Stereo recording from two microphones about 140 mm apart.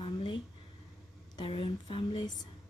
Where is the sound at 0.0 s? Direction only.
40° left (ahead or behind).